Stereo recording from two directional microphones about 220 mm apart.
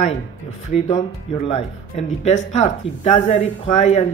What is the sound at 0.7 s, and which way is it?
A woman's voice, 35° left (ahead or behind).